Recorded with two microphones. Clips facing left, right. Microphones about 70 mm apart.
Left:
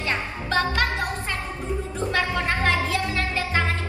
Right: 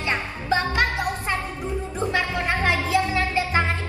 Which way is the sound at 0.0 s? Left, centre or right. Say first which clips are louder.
Right 1 dB; right.